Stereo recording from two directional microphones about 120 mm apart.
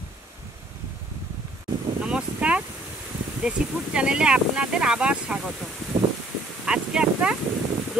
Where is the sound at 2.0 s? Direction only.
10° right (ahead or behind).